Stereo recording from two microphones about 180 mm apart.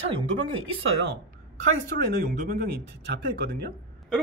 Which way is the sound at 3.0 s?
65° right (ahead or behind).